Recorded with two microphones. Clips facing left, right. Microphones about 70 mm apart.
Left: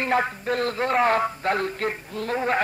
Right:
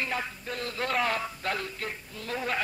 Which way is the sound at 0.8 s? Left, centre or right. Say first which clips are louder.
Left 7 dB; left.